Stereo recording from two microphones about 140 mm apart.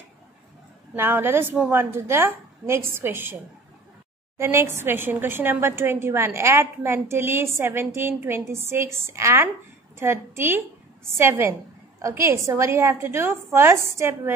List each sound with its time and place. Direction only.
0.9 s a woman's voice: 15° right (ahead or behind)
4.4 s a woman's voice: 20° right (ahead or behind)